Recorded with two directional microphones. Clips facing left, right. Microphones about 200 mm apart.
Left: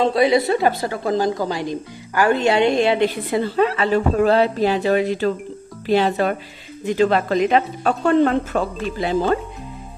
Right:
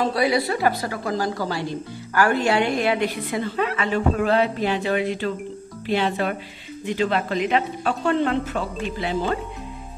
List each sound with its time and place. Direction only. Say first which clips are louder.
0.0 s a woman's voice: left 5 dB; 25° left (ahead or behind); by 8.6 s 45° left (ahead or behind)